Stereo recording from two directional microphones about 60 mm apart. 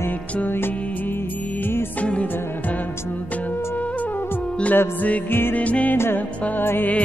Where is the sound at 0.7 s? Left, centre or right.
Left.